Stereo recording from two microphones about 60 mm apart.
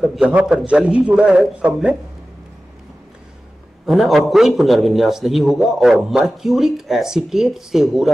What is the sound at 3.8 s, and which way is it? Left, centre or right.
A man's voice, centre.